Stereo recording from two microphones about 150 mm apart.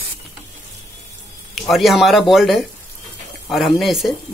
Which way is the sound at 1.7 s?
Centre (ahead or behind).